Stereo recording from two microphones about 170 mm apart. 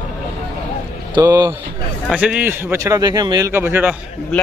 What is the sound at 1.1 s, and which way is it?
Speech, 25° right (ahead or behind).